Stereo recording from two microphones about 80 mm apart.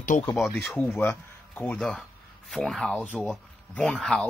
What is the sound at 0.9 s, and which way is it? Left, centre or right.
Speech, left.